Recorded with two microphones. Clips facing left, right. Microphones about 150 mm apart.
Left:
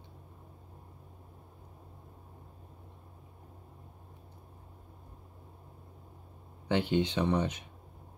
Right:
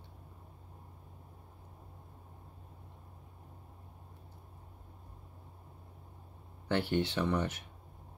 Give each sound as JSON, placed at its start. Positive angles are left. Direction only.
{"t": 6.7, "sound": "speech", "side_deg": 15}